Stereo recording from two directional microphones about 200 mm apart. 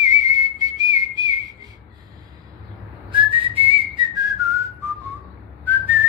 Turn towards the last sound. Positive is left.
turn(degrees=-10)  # may be behind; listen again after turning